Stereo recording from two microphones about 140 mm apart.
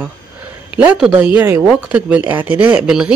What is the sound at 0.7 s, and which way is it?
Speech, 5° right (ahead or behind).